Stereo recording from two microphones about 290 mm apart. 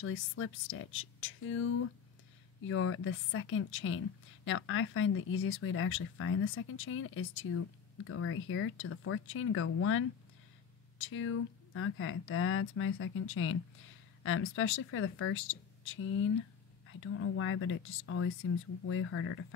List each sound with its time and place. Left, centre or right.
0.0 s speech: left